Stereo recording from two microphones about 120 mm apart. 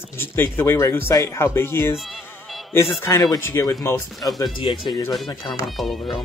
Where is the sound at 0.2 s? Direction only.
20° left (ahead or behind).